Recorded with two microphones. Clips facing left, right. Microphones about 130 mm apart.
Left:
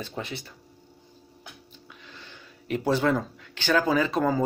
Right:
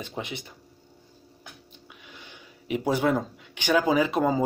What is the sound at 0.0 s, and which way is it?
Speech, 15° right (ahead or behind).